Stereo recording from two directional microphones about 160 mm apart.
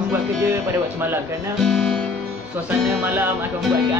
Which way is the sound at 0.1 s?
15° right (ahead or behind).